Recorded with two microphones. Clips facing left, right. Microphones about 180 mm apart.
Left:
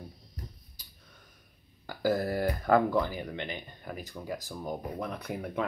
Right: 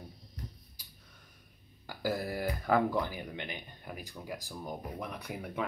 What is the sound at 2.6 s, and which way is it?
Speech, 15° right (ahead or behind).